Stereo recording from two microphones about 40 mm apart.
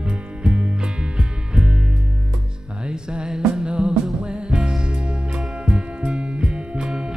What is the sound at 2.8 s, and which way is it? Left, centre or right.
Music, right.